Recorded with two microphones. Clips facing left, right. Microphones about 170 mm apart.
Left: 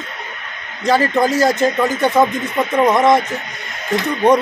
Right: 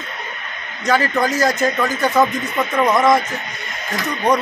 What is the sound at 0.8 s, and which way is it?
Speech, 25° left (ahead or behind).